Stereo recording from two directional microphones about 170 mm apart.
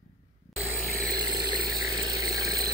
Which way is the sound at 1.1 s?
25° right (ahead or behind).